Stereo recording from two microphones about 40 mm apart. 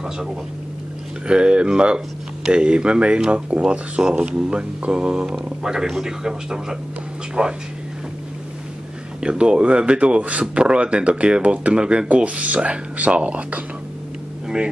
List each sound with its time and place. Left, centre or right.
1.2 s a man's voice: right
7.4 s speech: right
9.2 s speech: right